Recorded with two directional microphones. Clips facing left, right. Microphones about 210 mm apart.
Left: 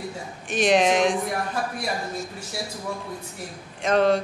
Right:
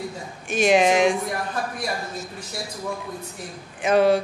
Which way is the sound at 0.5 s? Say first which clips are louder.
Right 2 dB; centre (ahead or behind).